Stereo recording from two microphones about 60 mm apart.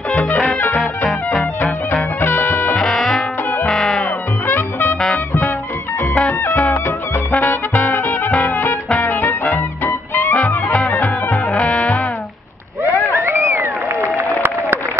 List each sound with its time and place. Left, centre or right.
0.1 s music: left
2.2 s music: left
2.7 s music: centre
4.5 s music: left
6.2 s music: left
13.1 s a sound: right
14.1 s applause: right